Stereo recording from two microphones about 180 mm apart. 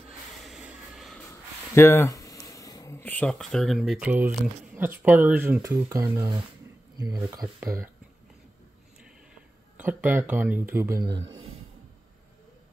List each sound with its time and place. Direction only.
0.4 s a sound: 5° right (ahead or behind)
1.8 s speech: 15° left (ahead or behind); by 7.9 s 15° right (ahead or behind)
9.8 s speech: 10° right (ahead or behind)